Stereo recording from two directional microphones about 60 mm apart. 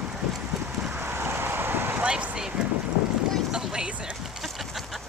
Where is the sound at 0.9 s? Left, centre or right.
Right.